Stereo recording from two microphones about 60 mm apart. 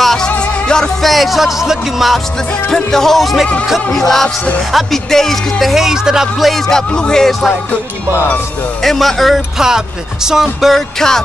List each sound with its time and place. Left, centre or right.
0.0 s music: centre
1.0 s speech: centre
4.7 s speech: centre
6.9 s speech: centre
8.8 s speech: centre